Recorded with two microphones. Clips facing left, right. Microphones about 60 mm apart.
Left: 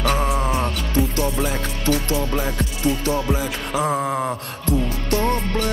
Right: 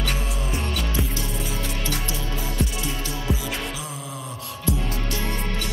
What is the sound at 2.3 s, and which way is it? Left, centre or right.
Music, left.